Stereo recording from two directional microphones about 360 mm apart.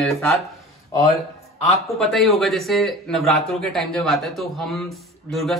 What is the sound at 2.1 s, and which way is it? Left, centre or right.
Speech, centre.